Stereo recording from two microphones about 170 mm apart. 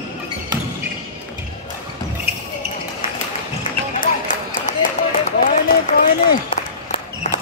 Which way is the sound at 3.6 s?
50° left (ahead or behind).